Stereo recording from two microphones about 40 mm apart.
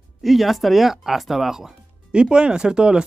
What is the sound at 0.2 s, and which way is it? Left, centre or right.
Speech, centre.